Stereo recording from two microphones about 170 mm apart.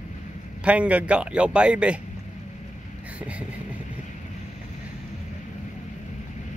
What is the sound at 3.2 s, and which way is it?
Vehicle, 10° right (ahead or behind).